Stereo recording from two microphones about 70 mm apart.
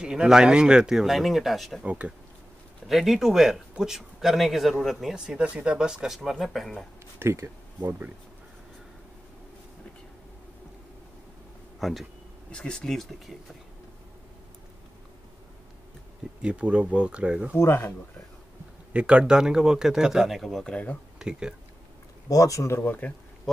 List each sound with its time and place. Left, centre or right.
0.0 s speech: centre
1.8 s speech: centre
2.9 s speech: centre
7.2 s speech: right
11.8 s speech: centre
12.4 s speech: centre
16.4 s speech: centre
17.6 s speech: left
18.9 s speech: centre
20.6 s speech: centre
21.2 s speech: centre
22.3 s speech: left
22.8 s speech: left